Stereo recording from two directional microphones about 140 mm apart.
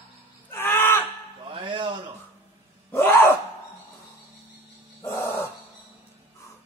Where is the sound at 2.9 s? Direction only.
15° left (ahead or behind).